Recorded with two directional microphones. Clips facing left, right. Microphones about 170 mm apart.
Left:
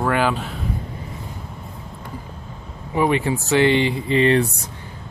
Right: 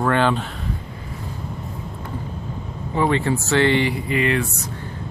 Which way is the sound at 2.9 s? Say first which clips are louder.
Left 1 dB; 15° left (ahead or behind).